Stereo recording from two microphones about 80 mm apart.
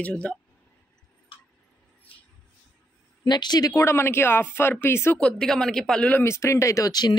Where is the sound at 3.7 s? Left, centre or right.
Left.